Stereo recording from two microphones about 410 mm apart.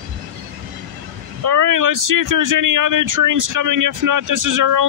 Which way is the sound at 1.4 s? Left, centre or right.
Right.